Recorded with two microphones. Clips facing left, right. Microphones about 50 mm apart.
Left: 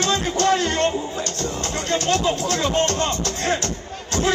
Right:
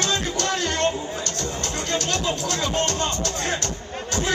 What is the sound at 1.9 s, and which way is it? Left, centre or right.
Music, left.